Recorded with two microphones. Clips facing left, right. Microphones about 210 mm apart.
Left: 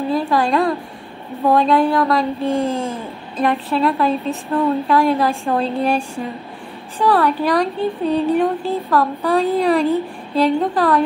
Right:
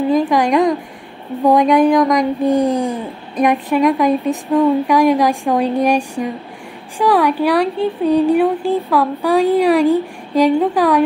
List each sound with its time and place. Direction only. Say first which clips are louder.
0.1 s a woman's voice: right 2 dB; 15° right (ahead or behind)